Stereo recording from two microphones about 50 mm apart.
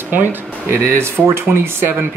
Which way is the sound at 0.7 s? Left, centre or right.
Right.